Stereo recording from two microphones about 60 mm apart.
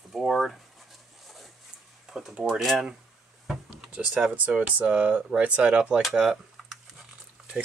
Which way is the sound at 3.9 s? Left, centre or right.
Centre.